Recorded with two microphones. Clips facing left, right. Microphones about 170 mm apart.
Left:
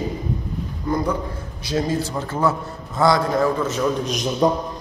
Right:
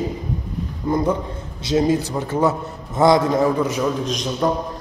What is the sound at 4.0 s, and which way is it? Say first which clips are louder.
Speech: even; 5° left (ahead or behind).